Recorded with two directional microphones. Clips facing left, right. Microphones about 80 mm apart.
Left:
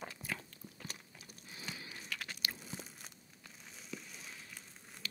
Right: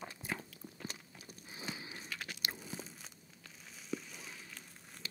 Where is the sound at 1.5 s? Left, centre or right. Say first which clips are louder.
Right 3 dB; right.